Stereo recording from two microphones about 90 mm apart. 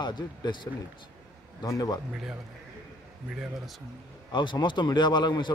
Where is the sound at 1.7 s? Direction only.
45° left (ahead or behind).